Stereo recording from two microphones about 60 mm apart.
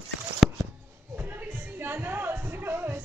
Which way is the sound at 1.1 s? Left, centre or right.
Right.